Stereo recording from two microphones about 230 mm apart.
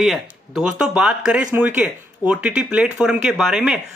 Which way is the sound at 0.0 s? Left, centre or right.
Centre.